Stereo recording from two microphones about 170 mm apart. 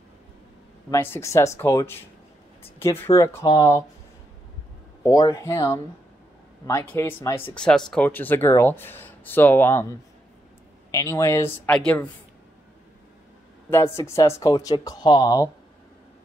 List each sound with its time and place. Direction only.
0.8 s speech: 15° left (ahead or behind)
5.0 s speech: 20° left (ahead or behind)
10.9 s speech: 15° left (ahead or behind)
13.7 s speech: 15° left (ahead or behind)